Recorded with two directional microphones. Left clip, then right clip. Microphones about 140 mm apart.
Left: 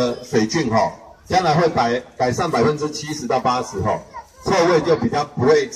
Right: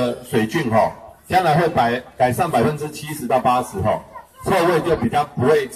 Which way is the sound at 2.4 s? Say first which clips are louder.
Right 1 dB; 40° right (ahead or behind).